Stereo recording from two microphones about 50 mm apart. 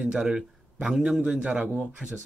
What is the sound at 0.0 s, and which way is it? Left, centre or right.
Speech, centre.